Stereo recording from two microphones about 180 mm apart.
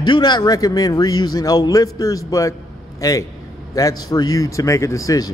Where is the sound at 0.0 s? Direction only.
25° left (ahead or behind).